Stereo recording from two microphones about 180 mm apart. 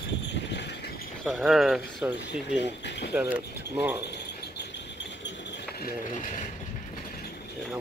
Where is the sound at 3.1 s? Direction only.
10° right (ahead or behind).